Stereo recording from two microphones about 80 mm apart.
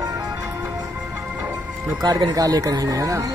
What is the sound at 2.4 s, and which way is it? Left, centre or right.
Speech, right.